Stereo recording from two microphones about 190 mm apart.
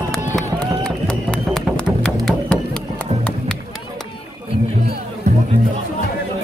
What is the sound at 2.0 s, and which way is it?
Music, 5° left (ahead or behind).